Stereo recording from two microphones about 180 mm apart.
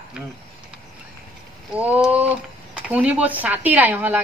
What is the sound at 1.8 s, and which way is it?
A woman's voice, 10° right (ahead or behind).